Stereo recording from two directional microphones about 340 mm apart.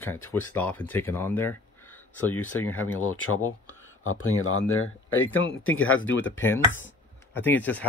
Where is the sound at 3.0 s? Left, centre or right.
Left.